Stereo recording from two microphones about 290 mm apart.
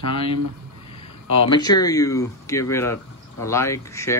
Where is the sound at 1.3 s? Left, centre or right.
Centre.